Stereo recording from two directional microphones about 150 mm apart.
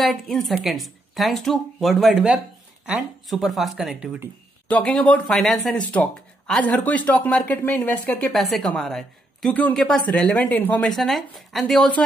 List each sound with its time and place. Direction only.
0.0 s a woman's voice: centre (ahead or behind)
4.6 s speech: 10° left (ahead or behind)
10.9 s a woman's voice: centre (ahead or behind)